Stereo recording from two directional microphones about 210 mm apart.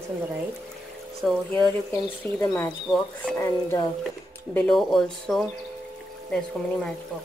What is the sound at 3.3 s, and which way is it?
Speech, 15° left (ahead or behind).